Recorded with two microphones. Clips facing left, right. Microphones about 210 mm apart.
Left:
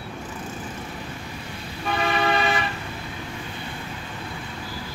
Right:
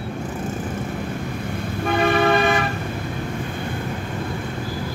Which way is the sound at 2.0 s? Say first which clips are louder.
Right 5 dB; 50° right (ahead or behind).